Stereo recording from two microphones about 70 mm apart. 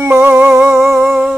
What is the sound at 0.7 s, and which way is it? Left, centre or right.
Music, right.